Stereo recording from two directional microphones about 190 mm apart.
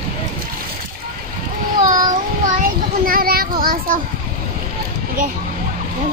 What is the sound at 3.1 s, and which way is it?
Child singing, 50° right (ahead or behind).